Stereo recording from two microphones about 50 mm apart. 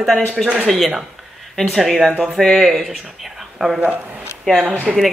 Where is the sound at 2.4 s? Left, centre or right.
Centre.